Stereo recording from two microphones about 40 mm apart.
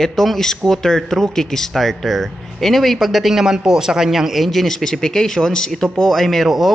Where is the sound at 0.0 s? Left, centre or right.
Centre.